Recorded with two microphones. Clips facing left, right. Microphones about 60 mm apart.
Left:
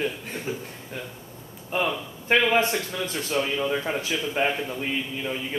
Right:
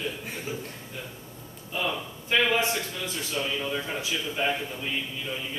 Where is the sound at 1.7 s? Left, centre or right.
Left.